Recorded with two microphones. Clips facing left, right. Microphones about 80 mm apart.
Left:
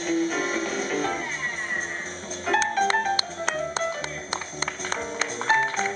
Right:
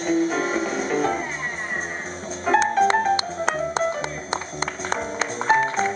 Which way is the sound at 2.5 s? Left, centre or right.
Centre.